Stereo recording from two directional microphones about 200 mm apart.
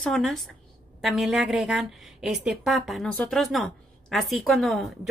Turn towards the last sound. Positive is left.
turn(degrees=0)  # may be behind; listen again after turning